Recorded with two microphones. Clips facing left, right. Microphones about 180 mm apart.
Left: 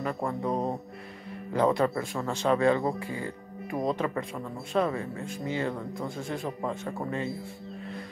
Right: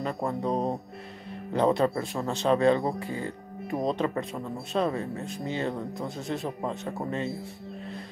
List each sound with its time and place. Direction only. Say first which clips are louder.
0.0 s speech: right 1 dB; 25° right (ahead or behind)